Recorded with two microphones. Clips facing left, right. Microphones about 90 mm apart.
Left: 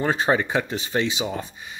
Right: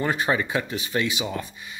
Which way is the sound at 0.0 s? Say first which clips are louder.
Left 2 dB; 25° left (ahead or behind).